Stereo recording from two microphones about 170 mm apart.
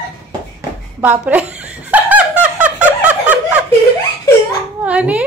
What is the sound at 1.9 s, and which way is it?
Snicker, 10° right (ahead or behind).